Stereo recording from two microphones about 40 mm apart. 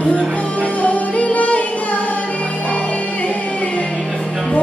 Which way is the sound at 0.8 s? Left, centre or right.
Left.